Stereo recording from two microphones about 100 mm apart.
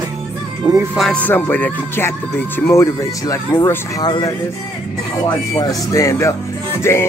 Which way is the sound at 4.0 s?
45° left (ahead or behind).